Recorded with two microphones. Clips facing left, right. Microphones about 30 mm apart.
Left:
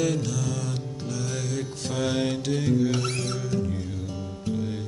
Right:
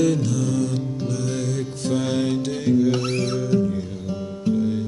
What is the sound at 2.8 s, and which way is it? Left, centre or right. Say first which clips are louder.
Music: right 5 dB; centre.